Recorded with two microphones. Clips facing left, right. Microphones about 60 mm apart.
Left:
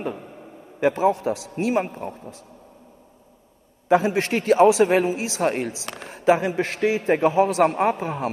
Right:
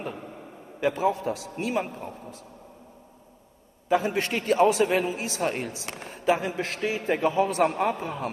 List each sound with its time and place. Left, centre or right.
0.7 s speech: left
3.9 s a man's voice: left
7.6 s speech: left